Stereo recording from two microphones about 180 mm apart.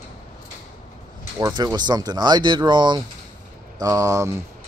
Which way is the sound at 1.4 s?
20° right (ahead or behind).